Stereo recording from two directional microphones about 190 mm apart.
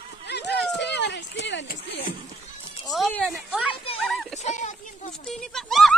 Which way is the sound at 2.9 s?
Centre (ahead or behind).